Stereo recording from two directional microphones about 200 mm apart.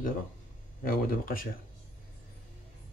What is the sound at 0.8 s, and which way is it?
Speech, 45° left (ahead or behind).